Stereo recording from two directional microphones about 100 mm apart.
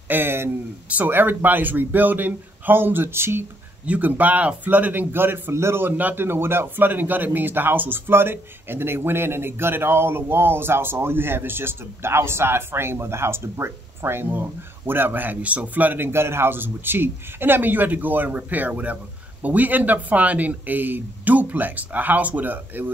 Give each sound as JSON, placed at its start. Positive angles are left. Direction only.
{"t": 0.1, "sound": "a man's voice", "side_deg": -20}